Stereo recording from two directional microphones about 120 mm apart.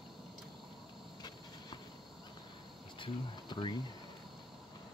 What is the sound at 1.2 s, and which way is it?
Train, 35° left (ahead or behind).